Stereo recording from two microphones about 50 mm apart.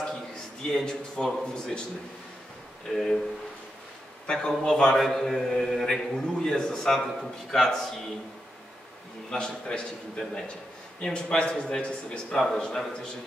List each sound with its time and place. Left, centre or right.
0.7 s speech: centre
2.9 s speech: centre
4.3 s speech: centre
6.3 s speech: centre
9.3 s a man's voice: centre
12.4 s speech: centre